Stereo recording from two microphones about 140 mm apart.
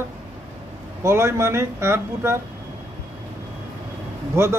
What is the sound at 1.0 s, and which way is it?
Speech, 20° right (ahead or behind).